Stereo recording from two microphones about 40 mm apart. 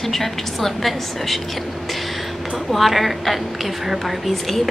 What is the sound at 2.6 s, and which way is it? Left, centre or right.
A woman's voice, centre.